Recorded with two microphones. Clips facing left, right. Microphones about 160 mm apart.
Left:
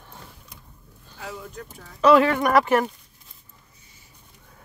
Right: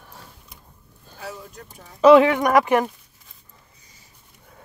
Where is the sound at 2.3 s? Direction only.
15° right (ahead or behind).